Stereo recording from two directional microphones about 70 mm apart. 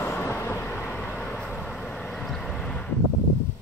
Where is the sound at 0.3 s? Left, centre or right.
Left.